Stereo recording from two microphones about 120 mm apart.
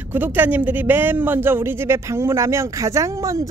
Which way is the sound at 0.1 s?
15° right (ahead or behind).